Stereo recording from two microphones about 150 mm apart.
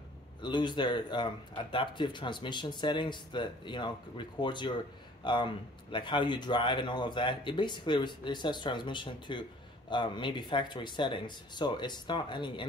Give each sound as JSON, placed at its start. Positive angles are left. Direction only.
{"t": 0.4, "sound": "speech", "side_deg": 30}